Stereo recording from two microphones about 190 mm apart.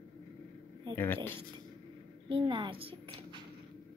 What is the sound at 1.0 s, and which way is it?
Speech, 10° left (ahead or behind).